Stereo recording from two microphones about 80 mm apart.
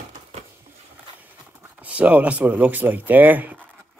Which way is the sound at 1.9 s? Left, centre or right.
Centre.